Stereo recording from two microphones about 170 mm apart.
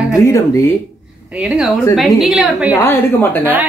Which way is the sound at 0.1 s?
20° left (ahead or behind).